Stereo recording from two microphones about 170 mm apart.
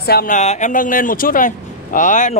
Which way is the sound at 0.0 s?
65° left (ahead or behind).